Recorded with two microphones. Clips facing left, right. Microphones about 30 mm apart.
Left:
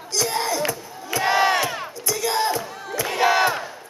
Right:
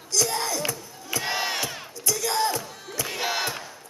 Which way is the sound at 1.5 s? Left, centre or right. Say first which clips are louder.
Left 8 dB; left.